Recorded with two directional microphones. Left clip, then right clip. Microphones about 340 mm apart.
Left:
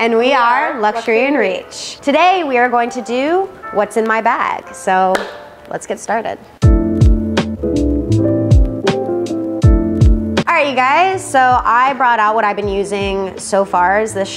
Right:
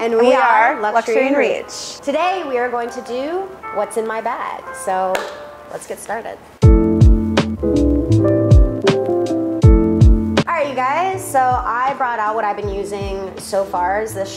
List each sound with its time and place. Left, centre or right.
0.0 s a woman's voice: centre
6.6 s music: centre
10.4 s a woman's voice: left